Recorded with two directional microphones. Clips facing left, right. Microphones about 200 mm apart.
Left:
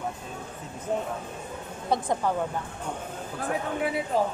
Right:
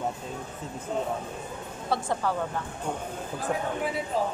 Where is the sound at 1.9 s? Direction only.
15° left (ahead or behind).